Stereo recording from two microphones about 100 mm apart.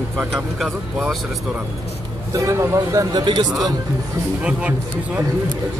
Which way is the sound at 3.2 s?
50° right (ahead or behind).